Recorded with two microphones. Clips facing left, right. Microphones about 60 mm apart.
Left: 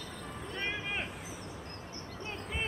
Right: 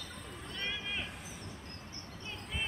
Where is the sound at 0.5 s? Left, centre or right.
Left.